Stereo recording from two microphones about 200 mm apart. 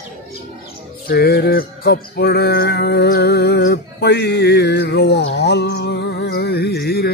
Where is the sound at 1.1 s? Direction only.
50° left (ahead or behind).